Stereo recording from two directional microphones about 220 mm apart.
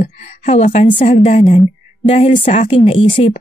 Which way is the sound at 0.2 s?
30° left (ahead or behind).